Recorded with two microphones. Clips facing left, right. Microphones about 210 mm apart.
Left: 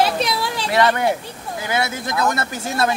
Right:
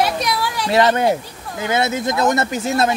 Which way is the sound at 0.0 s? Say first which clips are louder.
Even; 25° left (ahead or behind).